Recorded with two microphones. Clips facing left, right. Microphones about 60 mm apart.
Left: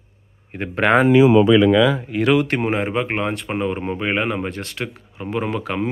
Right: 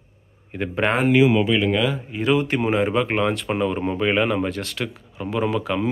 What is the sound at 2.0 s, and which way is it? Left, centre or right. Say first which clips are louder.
Speech: left 3 dB; left.